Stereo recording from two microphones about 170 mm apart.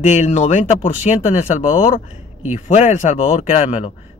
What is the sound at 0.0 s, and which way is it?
A man's voice, 40° left (ahead or behind).